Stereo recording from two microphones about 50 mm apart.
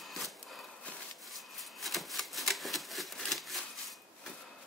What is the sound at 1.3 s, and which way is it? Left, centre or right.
Shuffling cards, centre.